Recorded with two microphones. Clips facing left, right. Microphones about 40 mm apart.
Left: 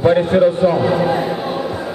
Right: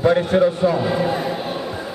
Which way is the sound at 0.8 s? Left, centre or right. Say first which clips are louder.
Left 4 dB; centre.